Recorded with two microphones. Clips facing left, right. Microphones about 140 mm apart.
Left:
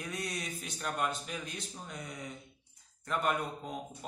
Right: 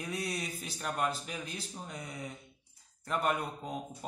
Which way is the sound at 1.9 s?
5° right (ahead or behind).